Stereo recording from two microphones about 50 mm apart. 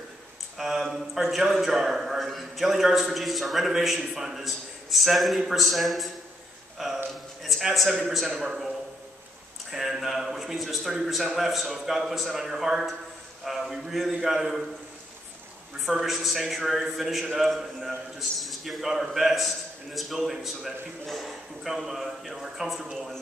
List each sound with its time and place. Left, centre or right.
0.6 s a man's voice: centre
7.4 s a sound: centre
8.4 s a man's voice: centre
15.8 s a man's voice: centre